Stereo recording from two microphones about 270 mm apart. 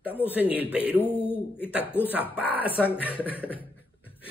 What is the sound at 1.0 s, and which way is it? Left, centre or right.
A man's voice, centre.